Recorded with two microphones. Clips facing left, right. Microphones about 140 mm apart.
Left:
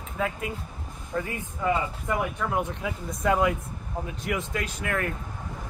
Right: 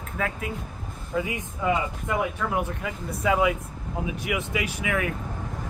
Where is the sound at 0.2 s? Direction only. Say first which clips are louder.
Even; centre (ahead or behind).